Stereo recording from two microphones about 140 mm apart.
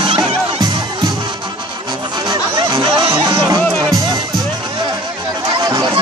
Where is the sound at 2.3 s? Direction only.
30° right (ahead or behind).